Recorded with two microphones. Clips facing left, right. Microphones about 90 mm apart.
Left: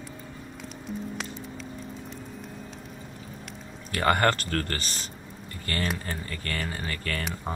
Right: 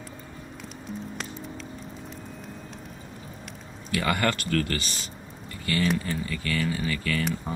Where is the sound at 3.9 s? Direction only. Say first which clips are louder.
Left 3 dB; 45° left (ahead or behind).